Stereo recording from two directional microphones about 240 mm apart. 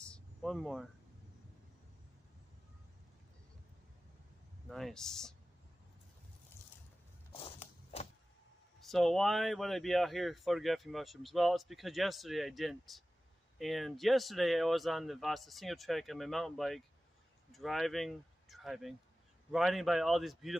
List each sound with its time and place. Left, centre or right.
0.0 s a sound: centre
4.6 s speech: centre
7.3 s walk: left
8.7 s speech: centre